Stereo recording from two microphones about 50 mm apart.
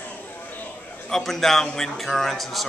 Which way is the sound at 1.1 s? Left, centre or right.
Centre.